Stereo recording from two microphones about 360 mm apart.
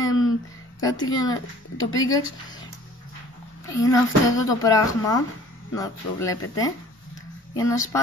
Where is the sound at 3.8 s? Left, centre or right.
Centre.